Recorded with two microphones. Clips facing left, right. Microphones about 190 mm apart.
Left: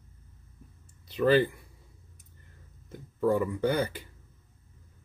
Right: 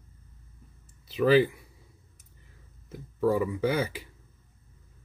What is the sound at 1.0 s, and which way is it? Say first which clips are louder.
Speech: right 2 dB; 5° right (ahead or behind).